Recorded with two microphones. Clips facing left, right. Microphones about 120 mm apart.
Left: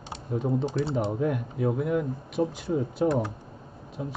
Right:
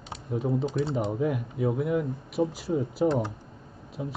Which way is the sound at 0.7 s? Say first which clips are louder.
Left 1 dB; 30° left (ahead or behind).